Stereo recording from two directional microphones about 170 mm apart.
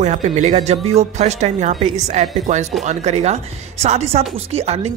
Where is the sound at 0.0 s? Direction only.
45° right (ahead or behind).